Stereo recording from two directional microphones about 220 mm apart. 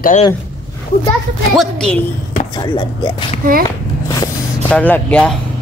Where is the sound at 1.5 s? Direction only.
Centre (ahead or behind).